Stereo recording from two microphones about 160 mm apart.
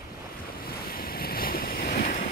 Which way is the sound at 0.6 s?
70° left (ahead or behind).